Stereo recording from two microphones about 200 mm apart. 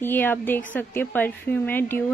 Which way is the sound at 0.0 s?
10° left (ahead or behind).